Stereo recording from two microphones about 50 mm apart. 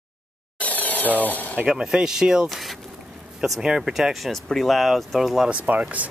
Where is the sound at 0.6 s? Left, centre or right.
Left.